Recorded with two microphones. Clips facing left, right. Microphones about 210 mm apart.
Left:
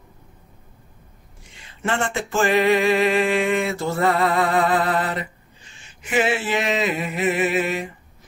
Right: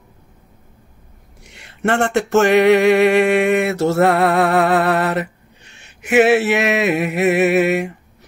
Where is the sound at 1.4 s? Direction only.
70° right (ahead or behind).